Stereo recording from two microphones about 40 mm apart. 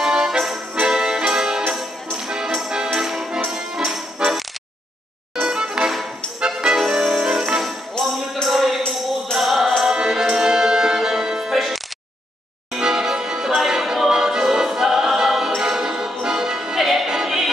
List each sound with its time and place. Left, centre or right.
0.0 s music: centre
8.0 s music: centre
8.5 s music: centre
9.8 s music: centre
13.7 s choir: centre
15.6 s music: centre